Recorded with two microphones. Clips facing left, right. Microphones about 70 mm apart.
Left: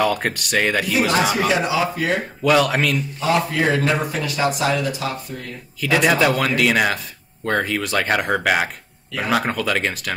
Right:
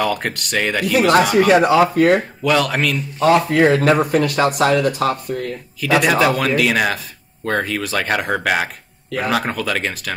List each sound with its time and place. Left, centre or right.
0.0 s a man's voice: centre
1.5 s speech: right
2.4 s a man's voice: centre
3.2 s speech: right
5.8 s a man's voice: centre